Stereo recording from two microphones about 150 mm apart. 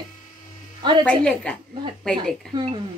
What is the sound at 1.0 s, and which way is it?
Speech, 10° left (ahead or behind).